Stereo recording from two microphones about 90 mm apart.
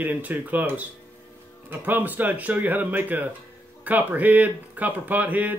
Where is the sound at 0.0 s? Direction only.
20° right (ahead or behind).